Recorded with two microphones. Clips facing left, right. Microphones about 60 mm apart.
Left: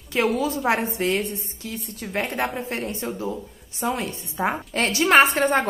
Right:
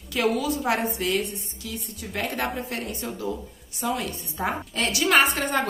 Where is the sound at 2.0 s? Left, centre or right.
Left.